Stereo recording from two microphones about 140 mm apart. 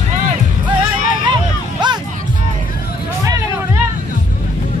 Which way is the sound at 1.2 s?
30° right (ahead or behind).